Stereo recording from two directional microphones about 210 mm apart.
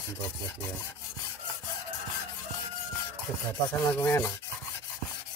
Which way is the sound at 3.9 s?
10° left (ahead or behind).